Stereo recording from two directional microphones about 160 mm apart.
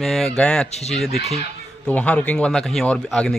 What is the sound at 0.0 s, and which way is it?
Speech, centre (ahead or behind).